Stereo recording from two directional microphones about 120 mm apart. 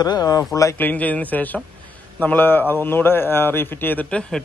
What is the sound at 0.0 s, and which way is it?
Speech, 30° left (ahead or behind).